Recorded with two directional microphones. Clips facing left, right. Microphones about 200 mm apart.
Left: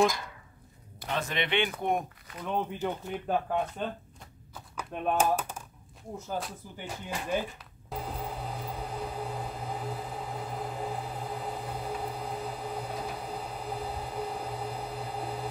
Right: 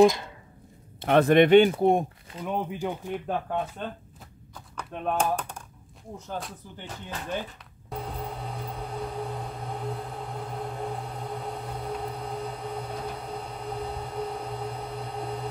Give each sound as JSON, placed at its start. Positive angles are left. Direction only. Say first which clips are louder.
{"t": 0.0, "sound": "speech", "louder": "right 7 dB", "side_deg": -20}
{"t": 1.0, "sound": "speech", "louder": "right 14 dB", "side_deg": -60}
{"t": 1.7, "sound": "speech", "louder": "right 8 dB", "side_deg": -30}
{"t": 2.4, "sound": "speech", "louder": "right 2 dB", "side_deg": -10}
{"t": 4.6, "sound": "speech", "louder": "even", "side_deg": 5}
{"t": 7.9, "sound": "vehicle", "louder": "right 2 dB", "side_deg": 0}